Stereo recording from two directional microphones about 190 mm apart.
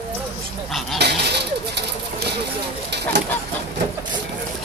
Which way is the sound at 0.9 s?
60° right (ahead or behind).